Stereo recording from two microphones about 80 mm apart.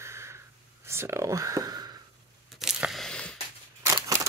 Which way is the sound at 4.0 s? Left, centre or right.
Right.